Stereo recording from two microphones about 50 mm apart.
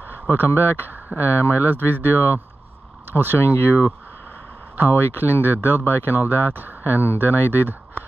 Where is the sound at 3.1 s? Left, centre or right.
Right.